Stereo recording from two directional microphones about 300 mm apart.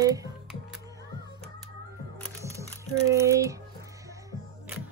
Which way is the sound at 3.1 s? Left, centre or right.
Centre.